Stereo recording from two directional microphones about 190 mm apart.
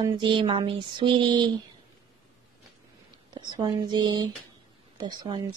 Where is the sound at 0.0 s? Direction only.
25° right (ahead or behind).